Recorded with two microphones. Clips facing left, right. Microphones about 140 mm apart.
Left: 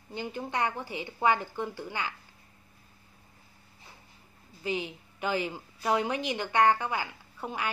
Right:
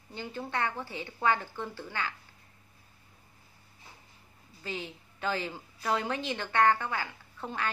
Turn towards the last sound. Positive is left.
turn(degrees=15)  # may be behind; listen again after turning